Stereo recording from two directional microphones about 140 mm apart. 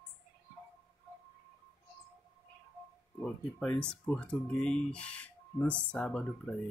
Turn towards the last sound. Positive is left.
turn(degrees=10)  # may be behind; listen again after turning